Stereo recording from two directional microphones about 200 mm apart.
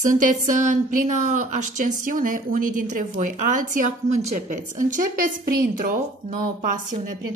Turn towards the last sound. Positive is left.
turn(degrees=-40)  # may be behind; listen again after turning